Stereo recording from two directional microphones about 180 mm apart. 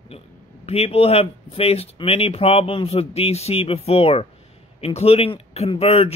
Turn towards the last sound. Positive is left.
turn(degrees=35)  # may be behind; listen again after turning